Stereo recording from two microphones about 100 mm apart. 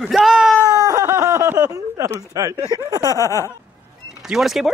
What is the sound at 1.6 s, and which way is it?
Speech, 30° right (ahead or behind).